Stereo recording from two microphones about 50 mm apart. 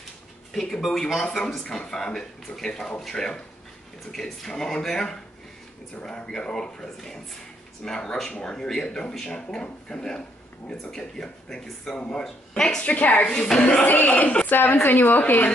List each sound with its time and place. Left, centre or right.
0.5 s speech: centre
12.8 s a woman's voice: left
13.3 s speech: centre
13.8 s speech: left